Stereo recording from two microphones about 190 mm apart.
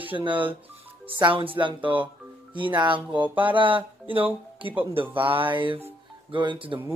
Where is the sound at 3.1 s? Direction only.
10° right (ahead or behind).